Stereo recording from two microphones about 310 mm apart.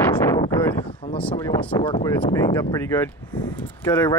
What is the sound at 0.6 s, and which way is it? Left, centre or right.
Speech, centre.